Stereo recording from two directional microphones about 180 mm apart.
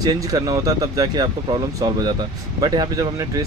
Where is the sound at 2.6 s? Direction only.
20° right (ahead or behind).